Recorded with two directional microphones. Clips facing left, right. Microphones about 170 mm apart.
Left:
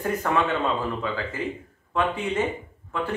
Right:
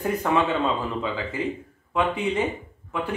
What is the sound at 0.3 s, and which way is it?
Speech, 15° right (ahead or behind).